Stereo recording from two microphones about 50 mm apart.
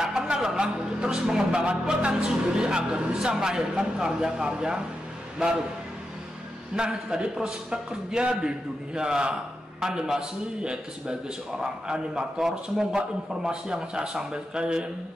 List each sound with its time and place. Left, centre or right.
0.0 s speech: centre
6.7 s speech: centre